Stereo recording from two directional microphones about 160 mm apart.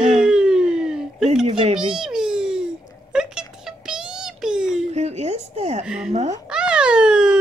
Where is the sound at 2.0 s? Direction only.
5° right (ahead or behind).